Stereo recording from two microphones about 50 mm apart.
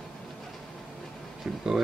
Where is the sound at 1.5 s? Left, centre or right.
Right.